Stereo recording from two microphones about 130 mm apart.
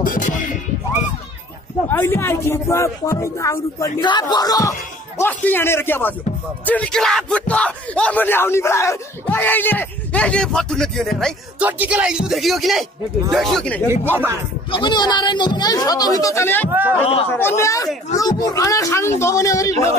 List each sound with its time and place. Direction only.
0.0 s music: 85° left
1.9 s speech: 15° left (ahead or behind)
4.0 s speech: 35° left (ahead or behind); by 11.3 s 5° left (ahead or behind)
11.6 s speech: 10° right (ahead or behind); by 13.8 s 5° left (ahead or behind)
14.7 s speech: 35° left (ahead or behind)